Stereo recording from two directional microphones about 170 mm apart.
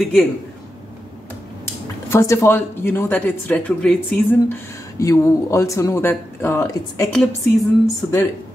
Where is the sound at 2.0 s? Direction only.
15° left (ahead or behind).